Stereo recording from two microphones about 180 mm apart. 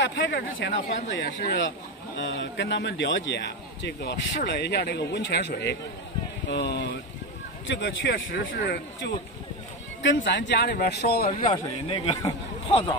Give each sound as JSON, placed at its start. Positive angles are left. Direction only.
{"t": 0.0, "sound": "a man's voice", "side_deg": 80}
{"t": 2.1, "sound": "a man's voice", "side_deg": 85}
{"t": 11.5, "sound": "a man's voice", "side_deg": 30}